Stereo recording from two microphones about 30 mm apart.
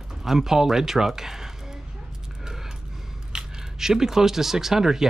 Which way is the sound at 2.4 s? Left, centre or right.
Centre.